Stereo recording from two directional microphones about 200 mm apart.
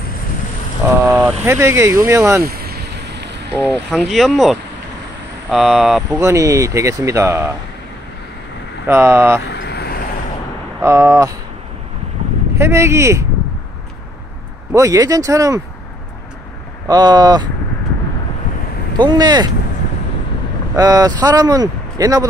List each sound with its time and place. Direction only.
1.0 s speech: 10° right (ahead or behind)
2.4 s vehicle: 50° right (ahead or behind)
3.6 s speech: centre (ahead or behind)
6.0 s speech: 15° right (ahead or behind)
8.8 s speech: 10° right (ahead or behind)
9.5 s vehicle: 55° left (ahead or behind)
10.8 s speech: 15° right (ahead or behind)
12.5 s speech: 15° right (ahead or behind)
14.7 s speech: 15° right (ahead or behind)
16.8 s speech: 20° right (ahead or behind)
18.9 s speech: 20° right (ahead or behind)
20.7 s speech: 15° right (ahead or behind)